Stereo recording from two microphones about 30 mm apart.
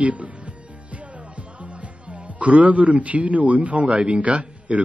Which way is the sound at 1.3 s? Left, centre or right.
Right.